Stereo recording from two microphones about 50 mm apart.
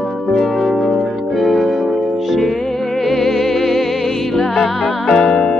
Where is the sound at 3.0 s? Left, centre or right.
Centre.